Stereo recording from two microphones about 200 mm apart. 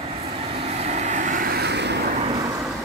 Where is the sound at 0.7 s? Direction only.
35° right (ahead or behind); by 2.1 s 55° right (ahead or behind).